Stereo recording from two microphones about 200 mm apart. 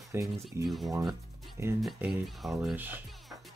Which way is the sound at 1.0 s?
Centre (ahead or behind).